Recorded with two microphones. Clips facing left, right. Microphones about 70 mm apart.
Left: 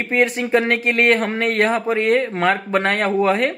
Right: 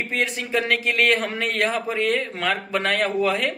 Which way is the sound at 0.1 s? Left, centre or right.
Left.